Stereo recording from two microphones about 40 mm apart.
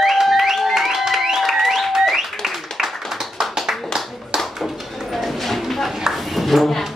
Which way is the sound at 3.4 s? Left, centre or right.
Centre.